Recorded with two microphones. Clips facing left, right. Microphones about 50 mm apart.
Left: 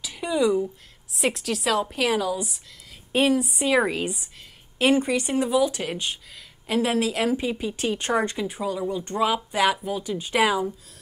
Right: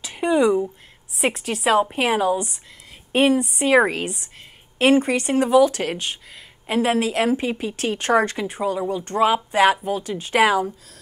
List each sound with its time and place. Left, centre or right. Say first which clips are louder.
0.1 s speech: right 5 dB; right
1.2 s a woman's voice: right 3 dB; centre
3.3 s speech: right 2 dB; right
3.6 s a woman's voice: right 6 dB; right
4.0 s speech: right 1 dB; right
4.7 s a woman's voice: right 4 dB; right
5.1 s speech: right 6 dB; right
6.7 s a woman's voice: right 3 dB; right
7.7 s speech: right 7 dB; right
8.4 s a woman's voice: right 4 dB; right
10.0 s speech: right 2 dB; right